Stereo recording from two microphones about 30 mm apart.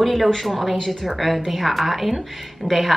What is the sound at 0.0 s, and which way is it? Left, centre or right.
Speech, centre.